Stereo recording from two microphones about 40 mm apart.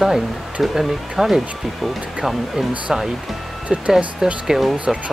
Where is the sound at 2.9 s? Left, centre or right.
Centre.